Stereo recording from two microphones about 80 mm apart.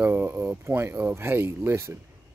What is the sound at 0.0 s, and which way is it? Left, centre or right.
Speech, right.